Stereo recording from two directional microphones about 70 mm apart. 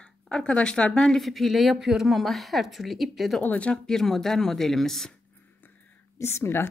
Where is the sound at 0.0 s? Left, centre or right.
Centre.